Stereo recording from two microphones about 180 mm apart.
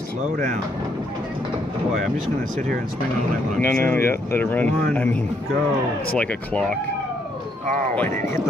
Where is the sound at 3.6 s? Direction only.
10° left (ahead or behind).